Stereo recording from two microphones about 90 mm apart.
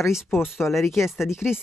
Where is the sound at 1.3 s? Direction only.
30° left (ahead or behind).